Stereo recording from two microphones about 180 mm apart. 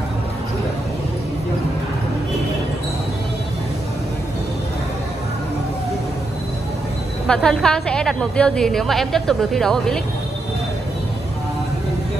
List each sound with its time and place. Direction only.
7.2 s a woman's voice: 5° left (ahead or behind)